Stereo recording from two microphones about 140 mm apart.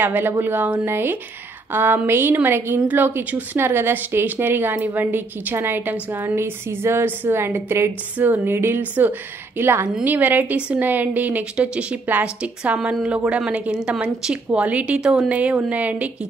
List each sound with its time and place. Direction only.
0.0 s speech: 15° right (ahead or behind)